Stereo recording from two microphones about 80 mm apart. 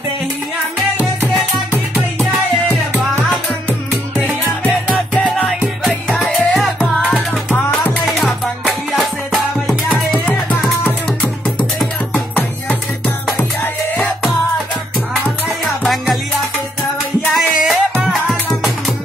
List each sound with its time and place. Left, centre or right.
5.5 s music: centre
8.0 s music: centre
10.8 s music: centre
15.4 s music: centre
17.3 s music: centre